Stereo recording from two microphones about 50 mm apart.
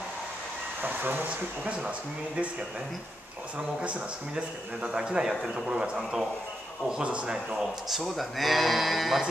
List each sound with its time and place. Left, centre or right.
0.8 s speech: right
1.6 s a man's voice: right
3.8 s a man's voice: right
7.3 s speech: centre